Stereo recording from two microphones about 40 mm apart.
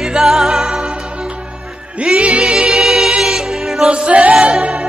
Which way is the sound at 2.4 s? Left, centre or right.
Centre.